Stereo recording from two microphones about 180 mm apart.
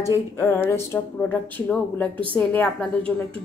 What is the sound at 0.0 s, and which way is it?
Speech, 15° left (ahead or behind).